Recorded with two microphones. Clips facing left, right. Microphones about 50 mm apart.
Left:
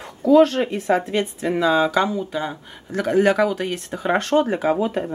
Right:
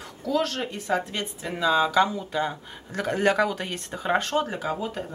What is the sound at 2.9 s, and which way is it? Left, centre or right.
Speech, centre.